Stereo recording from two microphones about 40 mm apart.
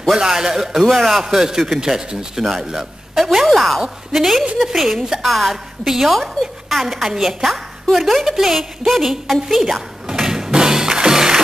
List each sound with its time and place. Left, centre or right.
0.1 s a man's voice: centre
10.0 s music: centre